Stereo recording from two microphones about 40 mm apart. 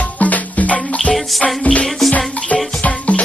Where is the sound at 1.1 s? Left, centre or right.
Centre.